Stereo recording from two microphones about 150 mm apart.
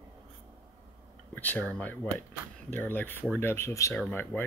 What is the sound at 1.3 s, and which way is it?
Speech, 10° left (ahead or behind).